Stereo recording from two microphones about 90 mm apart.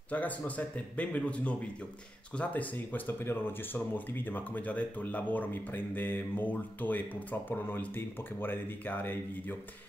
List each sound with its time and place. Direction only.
0.1 s speech: 15° left (ahead or behind)